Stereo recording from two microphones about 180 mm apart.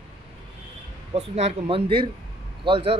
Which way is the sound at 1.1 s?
35° right (ahead or behind).